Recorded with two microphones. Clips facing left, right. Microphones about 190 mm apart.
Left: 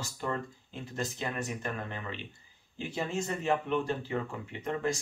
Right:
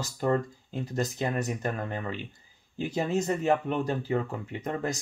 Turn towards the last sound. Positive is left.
turn(degrees=-40)  # may be behind; listen again after turning